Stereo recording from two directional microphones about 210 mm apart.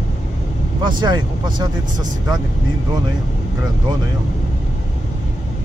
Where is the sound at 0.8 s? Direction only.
20° right (ahead or behind).